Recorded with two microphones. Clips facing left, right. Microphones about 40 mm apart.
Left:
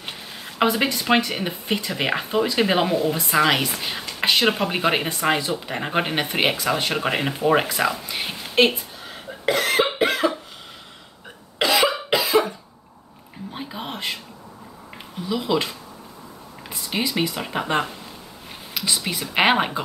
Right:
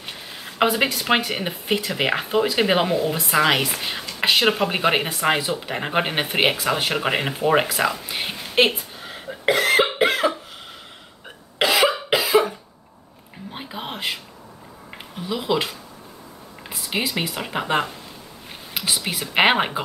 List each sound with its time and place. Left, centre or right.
0.1 s speech: centre
5.3 s speech: centre
5.7 s speech: centre
7.7 s a sound: centre
9.8 s cough: centre
11.8 s cough: centre
13.5 s a sound: centre
15.2 s speech: centre
16.9 s speech: centre